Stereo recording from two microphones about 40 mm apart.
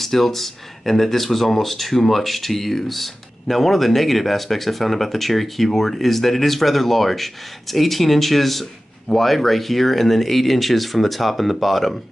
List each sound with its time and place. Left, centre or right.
0.0 s speech: centre